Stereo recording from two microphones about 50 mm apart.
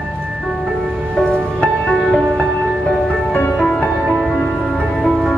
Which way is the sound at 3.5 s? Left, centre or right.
Centre.